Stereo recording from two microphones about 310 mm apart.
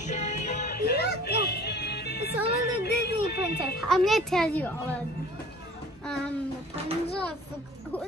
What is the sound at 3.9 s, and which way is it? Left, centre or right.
Speech, centre.